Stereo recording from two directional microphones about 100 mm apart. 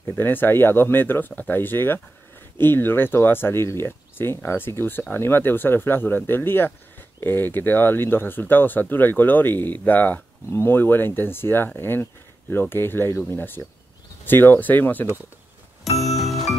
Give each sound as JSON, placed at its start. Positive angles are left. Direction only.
{"t": 0.2, "sound": "speech", "side_deg": 20}
{"t": 16.0, "sound": "music", "side_deg": 0}